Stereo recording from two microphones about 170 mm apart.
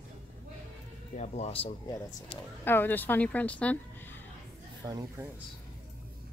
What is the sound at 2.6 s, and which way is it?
A woman's voice, 10° left (ahead or behind).